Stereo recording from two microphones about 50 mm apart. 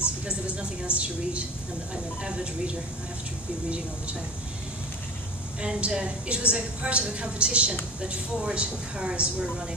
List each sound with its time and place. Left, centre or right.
0.6 s a woman's voice: right
5.6 s a woman's voice: centre